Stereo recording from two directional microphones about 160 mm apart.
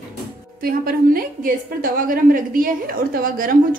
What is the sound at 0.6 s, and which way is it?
A woman's voice, 65° right (ahead or behind).